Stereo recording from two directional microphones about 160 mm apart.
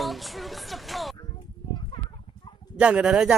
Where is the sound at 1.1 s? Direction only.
25° left (ahead or behind).